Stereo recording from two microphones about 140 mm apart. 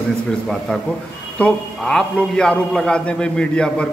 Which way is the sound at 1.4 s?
5° left (ahead or behind).